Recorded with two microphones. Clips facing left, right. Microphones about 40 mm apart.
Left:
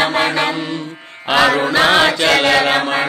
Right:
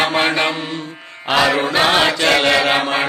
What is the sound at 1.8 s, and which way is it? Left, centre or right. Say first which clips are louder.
Chant: left 3 dB; left.